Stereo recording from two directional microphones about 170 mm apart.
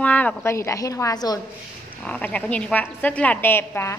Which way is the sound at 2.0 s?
10° left (ahead or behind).